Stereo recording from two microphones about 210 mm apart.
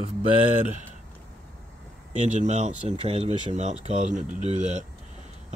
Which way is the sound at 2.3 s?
35° right (ahead or behind).